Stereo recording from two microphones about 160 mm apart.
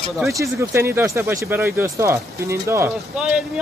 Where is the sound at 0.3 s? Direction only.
20° right (ahead or behind).